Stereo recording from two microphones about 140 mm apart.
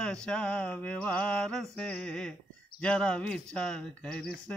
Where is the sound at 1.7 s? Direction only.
5° left (ahead or behind).